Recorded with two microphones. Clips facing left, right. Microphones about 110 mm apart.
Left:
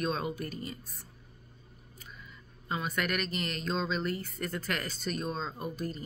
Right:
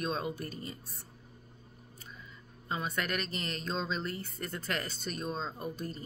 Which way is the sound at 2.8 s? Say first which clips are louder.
Left 3 dB; 30° right (ahead or behind).